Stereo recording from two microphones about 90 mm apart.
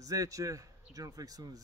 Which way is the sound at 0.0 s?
40° right (ahead or behind).